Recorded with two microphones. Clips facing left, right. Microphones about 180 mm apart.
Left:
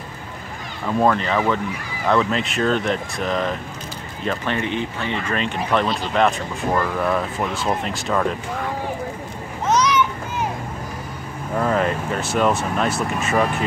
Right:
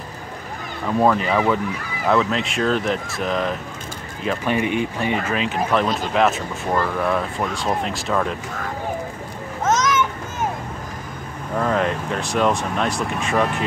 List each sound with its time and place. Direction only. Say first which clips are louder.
0.8 s speech: right 1 dB; 5° right (ahead or behind)
9.7 s children playing: left 1 dB; 45° right (ahead or behind)
11.5 s speech: left 1 dB; 5° left (ahead or behind)